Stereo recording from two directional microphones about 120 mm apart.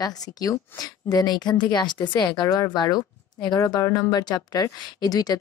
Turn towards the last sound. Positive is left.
turn(degrees=30)  # may be behind; listen again after turning